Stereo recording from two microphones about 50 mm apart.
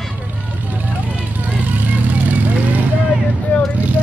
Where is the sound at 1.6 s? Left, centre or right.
Right.